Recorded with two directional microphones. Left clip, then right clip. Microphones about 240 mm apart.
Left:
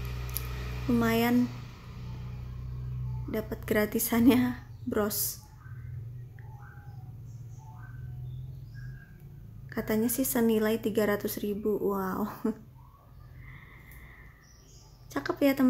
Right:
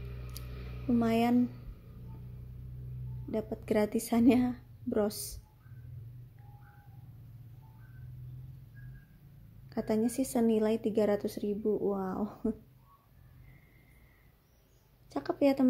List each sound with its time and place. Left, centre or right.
0.9 s a woman's voice: centre
3.3 s a woman's voice: centre
9.7 s a woman's voice: centre
15.0 s a woman's voice: centre